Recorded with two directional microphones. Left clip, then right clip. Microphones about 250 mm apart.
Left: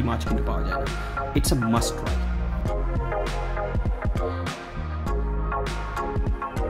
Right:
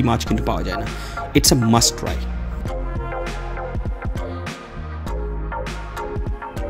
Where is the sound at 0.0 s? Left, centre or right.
Right.